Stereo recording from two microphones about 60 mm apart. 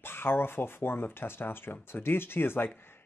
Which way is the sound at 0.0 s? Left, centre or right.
Left.